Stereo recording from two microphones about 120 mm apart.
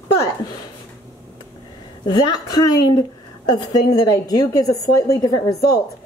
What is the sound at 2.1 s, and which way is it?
Speech, 35° left (ahead or behind).